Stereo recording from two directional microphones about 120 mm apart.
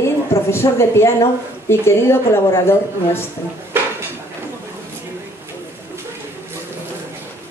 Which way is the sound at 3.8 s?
15° right (ahead or behind).